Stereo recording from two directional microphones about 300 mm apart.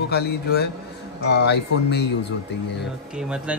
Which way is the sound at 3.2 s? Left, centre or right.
Centre.